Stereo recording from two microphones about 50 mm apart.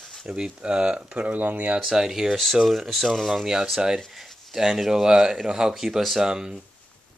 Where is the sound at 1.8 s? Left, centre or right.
Centre.